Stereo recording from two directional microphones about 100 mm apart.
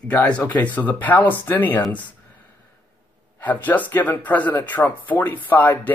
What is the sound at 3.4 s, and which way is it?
Speech, 15° left (ahead or behind).